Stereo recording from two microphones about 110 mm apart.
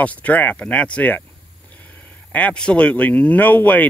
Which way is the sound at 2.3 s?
10° left (ahead or behind).